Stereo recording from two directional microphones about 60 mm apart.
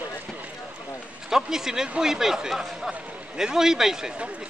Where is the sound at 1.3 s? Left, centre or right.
Centre.